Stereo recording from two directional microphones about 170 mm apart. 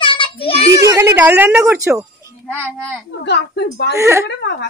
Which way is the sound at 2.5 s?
5° left (ahead or behind).